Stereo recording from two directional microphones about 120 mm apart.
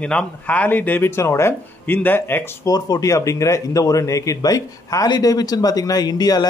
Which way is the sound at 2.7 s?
30° left (ahead or behind).